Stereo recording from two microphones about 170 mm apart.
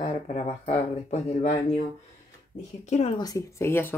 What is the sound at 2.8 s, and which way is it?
Speech, 40° left (ahead or behind).